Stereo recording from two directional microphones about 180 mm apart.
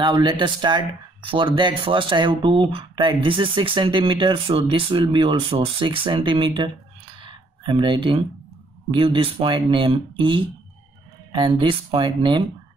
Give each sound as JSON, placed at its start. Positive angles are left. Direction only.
{"t": 0.0, "sound": "speech", "side_deg": -25}
{"t": 7.2, "sound": "a sound", "side_deg": -25}
{"t": 8.9, "sound": "speech", "side_deg": -30}